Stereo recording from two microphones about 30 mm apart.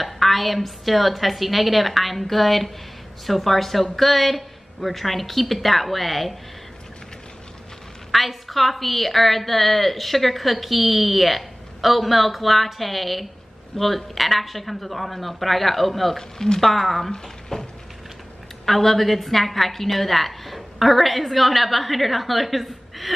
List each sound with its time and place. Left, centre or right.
0.0 s a woman's voice: centre
8.1 s a woman's voice: centre
16.2 s speech: centre
16.6 s a woman's voice: centre
17.1 s speech: centre
18.7 s a woman's voice: centre